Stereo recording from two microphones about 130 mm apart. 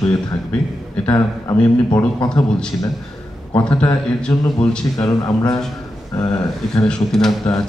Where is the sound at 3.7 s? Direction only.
10° left (ahead or behind).